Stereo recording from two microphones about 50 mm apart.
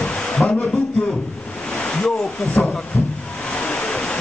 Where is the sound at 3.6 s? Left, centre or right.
Left.